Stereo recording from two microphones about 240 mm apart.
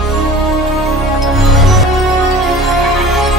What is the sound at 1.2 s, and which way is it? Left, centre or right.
Music, centre.